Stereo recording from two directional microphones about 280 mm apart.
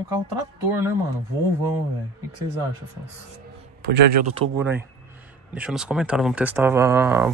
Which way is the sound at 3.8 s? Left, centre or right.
Right.